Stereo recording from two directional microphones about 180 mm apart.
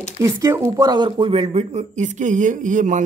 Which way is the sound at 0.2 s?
15° right (ahead or behind).